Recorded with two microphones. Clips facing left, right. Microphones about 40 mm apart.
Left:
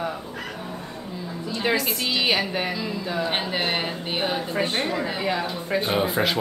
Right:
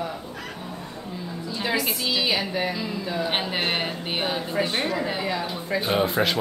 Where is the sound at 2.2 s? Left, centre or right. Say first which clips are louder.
Left 3 dB; left.